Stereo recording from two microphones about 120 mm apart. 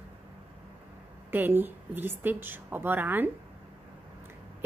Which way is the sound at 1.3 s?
15° right (ahead or behind).